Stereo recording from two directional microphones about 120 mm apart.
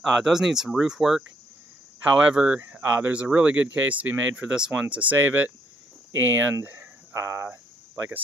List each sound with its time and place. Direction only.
0.0 s speech: 5° right (ahead or behind)
2.3 s speech: 5° right (ahead or behind)